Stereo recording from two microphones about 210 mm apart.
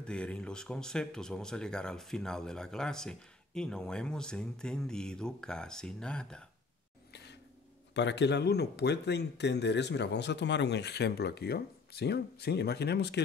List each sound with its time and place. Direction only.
0.0 s speech: 5° left (ahead or behind)
7.9 s speech: 55° left (ahead or behind)